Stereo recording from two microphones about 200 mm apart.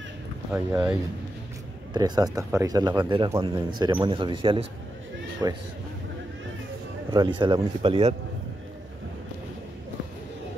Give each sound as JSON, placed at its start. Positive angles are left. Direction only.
{"t": 0.5, "sound": "speech", "side_deg": -10}
{"t": 2.0, "sound": "speech", "side_deg": -20}
{"t": 7.1, "sound": "speech", "side_deg": -15}
{"t": 7.3, "sound": "speech", "side_deg": -25}